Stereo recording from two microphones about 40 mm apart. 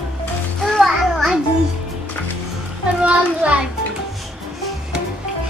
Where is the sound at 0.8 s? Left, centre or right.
Centre.